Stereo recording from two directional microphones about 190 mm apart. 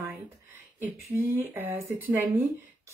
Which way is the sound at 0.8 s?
10° right (ahead or behind).